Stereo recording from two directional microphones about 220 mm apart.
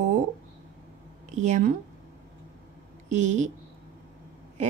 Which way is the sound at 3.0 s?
35° right (ahead or behind).